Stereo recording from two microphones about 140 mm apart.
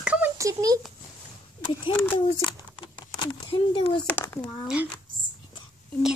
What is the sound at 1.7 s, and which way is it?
Speech, 35° left (ahead or behind).